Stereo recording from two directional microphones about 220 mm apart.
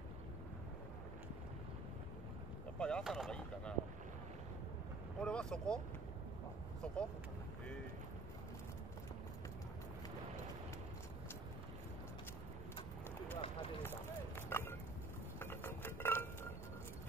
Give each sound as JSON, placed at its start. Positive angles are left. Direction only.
{"t": 2.8, "sound": "speech", "side_deg": 0}
{"t": 5.2, "sound": "speech", "side_deg": 5}
{"t": 13.4, "sound": "speech", "side_deg": 25}
{"t": 14.5, "sound": "a sound", "side_deg": 10}
{"t": 15.3, "sound": "dishes", "side_deg": 10}